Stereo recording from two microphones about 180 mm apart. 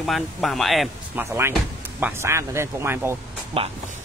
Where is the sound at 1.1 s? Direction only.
15° right (ahead or behind).